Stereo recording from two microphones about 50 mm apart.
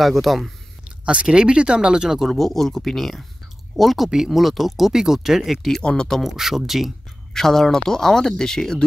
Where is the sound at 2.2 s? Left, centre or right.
Centre.